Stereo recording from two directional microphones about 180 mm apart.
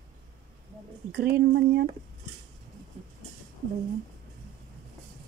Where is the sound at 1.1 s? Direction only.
65° right (ahead or behind).